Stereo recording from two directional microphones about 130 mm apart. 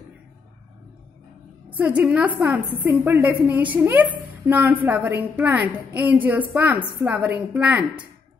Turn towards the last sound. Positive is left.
turn(degrees=-10)  # may be behind; listen again after turning